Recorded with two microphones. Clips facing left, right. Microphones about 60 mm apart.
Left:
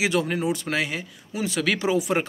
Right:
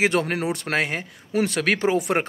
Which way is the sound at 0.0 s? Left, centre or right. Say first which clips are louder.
Right 2 dB; right.